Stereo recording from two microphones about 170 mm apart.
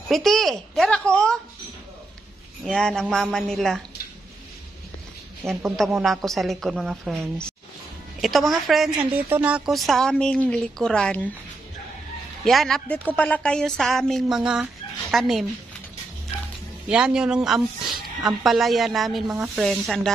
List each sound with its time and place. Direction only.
0.1 s a woman's voice: centre (ahead or behind)
2.6 s a woman's voice: 5° left (ahead or behind)
5.4 s speech: 15° right (ahead or behind)
5.9 s a woman's voice: centre (ahead or behind)
12.4 s a woman's voice: centre (ahead or behind)
16.8 s a woman's voice: 5° right (ahead or behind)